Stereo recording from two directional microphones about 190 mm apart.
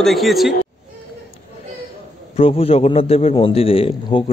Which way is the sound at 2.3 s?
30° left (ahead or behind).